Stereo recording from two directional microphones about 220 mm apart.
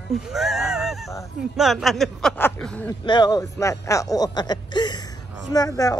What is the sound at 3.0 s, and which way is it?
Speech, 20° left (ahead or behind).